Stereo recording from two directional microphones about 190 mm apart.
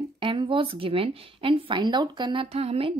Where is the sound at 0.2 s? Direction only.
25° right (ahead or behind).